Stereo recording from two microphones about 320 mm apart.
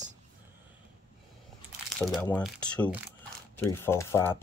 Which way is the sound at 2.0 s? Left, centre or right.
Centre.